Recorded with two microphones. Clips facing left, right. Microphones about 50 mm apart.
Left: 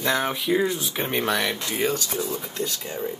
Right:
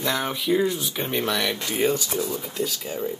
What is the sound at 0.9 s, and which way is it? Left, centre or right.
Speech, centre.